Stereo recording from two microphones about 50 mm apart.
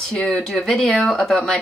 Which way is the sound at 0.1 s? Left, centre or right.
Centre.